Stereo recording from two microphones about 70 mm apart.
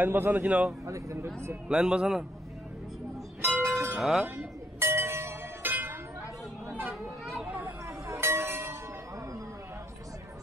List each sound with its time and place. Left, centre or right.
0.0 s a man's voice: right
0.8 s speech: right
1.2 s speech: right
1.7 s a man's voice: centre
3.4 s music: right
4.0 s speech: centre
4.7 s music: right
8.2 s train: right